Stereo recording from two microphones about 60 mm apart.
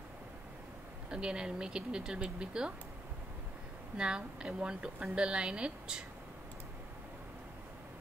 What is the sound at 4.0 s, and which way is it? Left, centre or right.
A woman's voice, centre.